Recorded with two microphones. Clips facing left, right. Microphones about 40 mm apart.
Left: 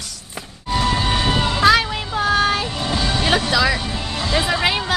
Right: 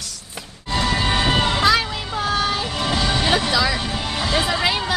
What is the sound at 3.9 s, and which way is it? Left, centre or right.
Music, right.